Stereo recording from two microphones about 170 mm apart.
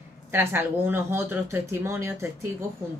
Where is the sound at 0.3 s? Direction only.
15° right (ahead or behind).